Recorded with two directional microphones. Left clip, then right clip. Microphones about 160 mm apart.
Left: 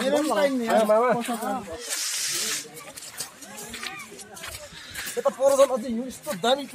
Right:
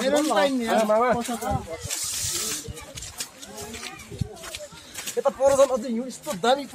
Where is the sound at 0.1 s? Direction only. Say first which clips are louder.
Right 1 dB; 30° left (ahead or behind).